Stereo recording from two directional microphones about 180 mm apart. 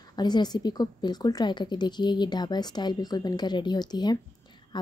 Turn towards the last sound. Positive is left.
turn(degrees=20)  # may be behind; listen again after turning